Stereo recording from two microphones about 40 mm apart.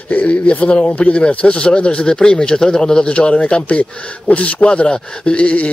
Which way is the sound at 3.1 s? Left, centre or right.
Left.